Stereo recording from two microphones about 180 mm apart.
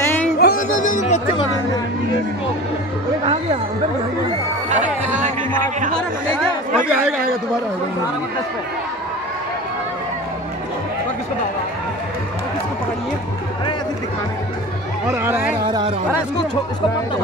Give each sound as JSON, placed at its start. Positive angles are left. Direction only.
{"t": 0.4, "sound": "music", "side_deg": 50}
{"t": 4.6, "sound": "music", "side_deg": -45}
{"t": 5.6, "sound": "chatter", "side_deg": -45}
{"t": 6.9, "sound": "speech", "side_deg": -5}
{"t": 15.0, "sound": "speech", "side_deg": -15}
{"t": 15.6, "sound": "speech", "side_deg": -30}